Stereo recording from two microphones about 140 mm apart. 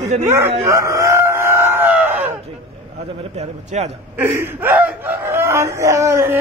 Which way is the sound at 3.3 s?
50° right (ahead or behind).